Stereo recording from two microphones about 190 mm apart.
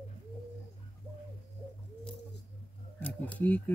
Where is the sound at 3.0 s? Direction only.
5° left (ahead or behind).